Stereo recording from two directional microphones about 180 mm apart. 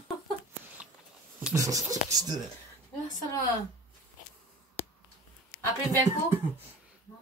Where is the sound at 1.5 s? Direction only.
20° right (ahead or behind).